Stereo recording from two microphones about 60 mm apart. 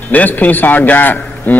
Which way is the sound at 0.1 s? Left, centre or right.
Left.